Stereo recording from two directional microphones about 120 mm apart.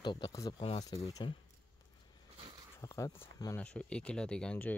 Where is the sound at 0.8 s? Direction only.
30° left (ahead or behind).